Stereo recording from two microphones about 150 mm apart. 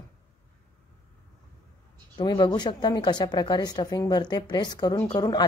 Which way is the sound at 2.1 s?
30° left (ahead or behind).